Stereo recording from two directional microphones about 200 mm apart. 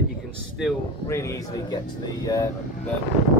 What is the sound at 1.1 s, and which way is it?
Speech, 15° left (ahead or behind).